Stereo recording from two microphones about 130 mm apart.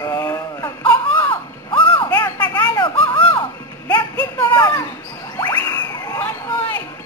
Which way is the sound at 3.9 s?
20° left (ahead or behind).